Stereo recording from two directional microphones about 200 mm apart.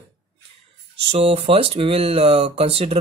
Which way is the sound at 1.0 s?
30° right (ahead or behind).